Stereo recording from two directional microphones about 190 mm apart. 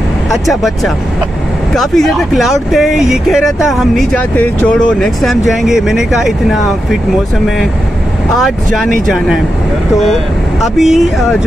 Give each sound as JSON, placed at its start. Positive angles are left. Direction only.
{"t": 0.5, "sound": "speech", "side_deg": 0}
{"t": 9.0, "sound": "speech", "side_deg": 0}
{"t": 10.6, "sound": "speech", "side_deg": 0}